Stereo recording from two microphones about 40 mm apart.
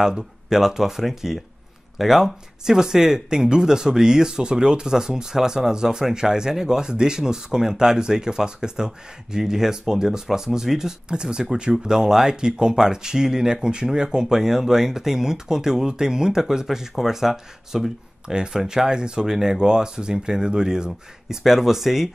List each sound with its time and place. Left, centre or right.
0.0 s speech: centre
18.3 s speech: right